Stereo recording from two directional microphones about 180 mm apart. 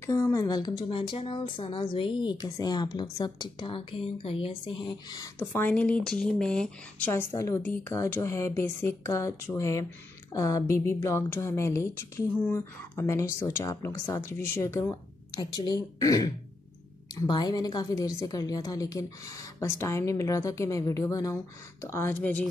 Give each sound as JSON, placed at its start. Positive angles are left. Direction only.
{"t": 0.0, "sound": "speech", "side_deg": 15}
{"t": 7.3, "sound": "a woman's voice", "side_deg": 15}